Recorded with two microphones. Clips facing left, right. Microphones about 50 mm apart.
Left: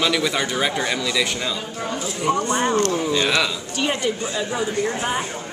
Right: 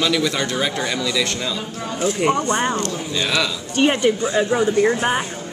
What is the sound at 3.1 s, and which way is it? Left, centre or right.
Speech, centre.